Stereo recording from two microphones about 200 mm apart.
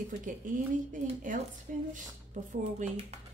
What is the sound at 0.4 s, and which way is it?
A woman's voice, 40° right (ahead or behind).